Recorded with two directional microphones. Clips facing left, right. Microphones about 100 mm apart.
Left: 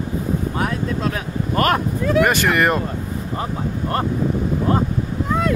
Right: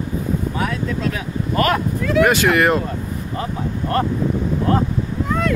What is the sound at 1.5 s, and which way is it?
Speech, 40° left (ahead or behind).